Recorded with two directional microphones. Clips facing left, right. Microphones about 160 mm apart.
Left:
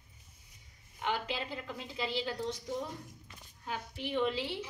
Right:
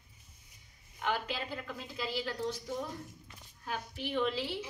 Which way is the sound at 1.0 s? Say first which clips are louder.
Even; 25° left (ahead or behind).